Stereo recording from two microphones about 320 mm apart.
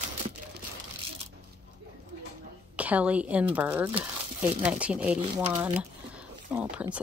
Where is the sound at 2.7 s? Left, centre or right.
Centre.